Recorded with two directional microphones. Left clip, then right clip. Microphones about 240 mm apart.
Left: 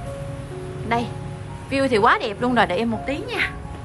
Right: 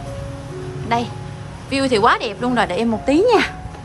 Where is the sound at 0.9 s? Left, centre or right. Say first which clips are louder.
Right 3 dB; centre.